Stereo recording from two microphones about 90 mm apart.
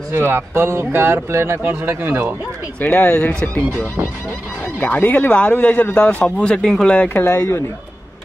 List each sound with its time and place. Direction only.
0.1 s a man's voice: 25° right (ahead or behind)
2.8 s speech: 20° left (ahead or behind)
7.2 s speech: 30° left (ahead or behind)